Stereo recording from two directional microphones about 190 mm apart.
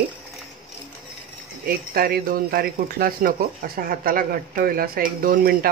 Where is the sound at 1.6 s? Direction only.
50° right (ahead or behind).